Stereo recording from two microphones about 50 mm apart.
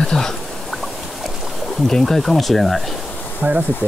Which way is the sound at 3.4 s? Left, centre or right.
Right.